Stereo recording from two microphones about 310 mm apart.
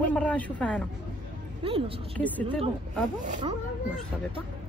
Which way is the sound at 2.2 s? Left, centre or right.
Centre.